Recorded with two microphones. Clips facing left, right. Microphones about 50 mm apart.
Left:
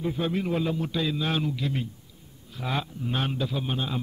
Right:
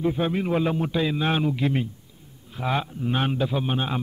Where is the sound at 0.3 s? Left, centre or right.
Centre.